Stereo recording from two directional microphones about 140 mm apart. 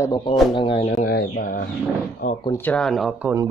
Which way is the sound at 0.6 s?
40° left (ahead or behind).